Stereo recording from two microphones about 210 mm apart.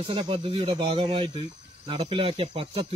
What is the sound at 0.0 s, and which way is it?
Speech, 25° right (ahead or behind).